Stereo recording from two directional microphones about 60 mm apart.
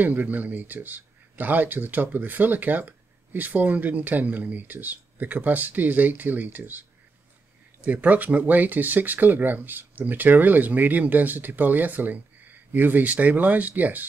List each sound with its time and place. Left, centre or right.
0.0 s speech: right
7.8 s speech: right